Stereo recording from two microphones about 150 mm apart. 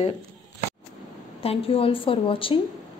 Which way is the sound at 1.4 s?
40° left (ahead or behind).